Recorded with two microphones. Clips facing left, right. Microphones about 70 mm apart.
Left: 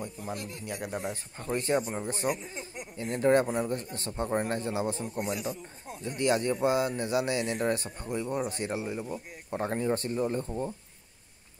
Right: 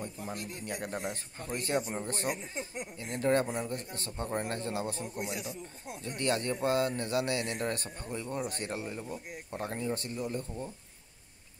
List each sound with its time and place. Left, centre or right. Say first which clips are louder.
0.7 s speech: left 1 dB; centre
1.4 s speech: left 4 dB; left
2.0 s speech: left 2 dB; centre
2.5 s speech: right 2 dB; right
3.0 s speech: left 5 dB; left
5.1 s speech: left 5 dB; left
6.0 s speech: left 5 dB; centre